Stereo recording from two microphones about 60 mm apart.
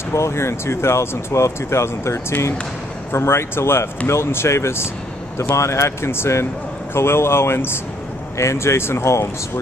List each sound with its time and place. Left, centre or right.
0.1 s speech: left
8.4 s speech: left